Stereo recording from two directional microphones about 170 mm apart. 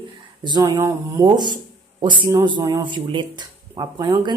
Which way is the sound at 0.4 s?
25° right (ahead or behind).